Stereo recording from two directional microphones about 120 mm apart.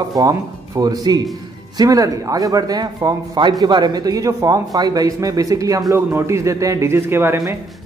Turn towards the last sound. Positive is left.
turn(degrees=-20)  # may be behind; listen again after turning